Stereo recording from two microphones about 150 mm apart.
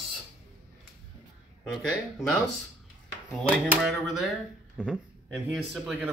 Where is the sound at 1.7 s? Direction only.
Centre (ahead or behind).